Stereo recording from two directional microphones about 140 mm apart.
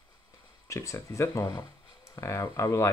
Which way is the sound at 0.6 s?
20° left (ahead or behind).